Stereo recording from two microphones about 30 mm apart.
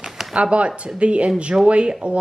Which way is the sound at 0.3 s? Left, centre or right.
Right.